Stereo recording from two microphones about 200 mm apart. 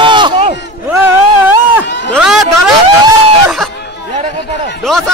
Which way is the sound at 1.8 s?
60° left (ahead or behind).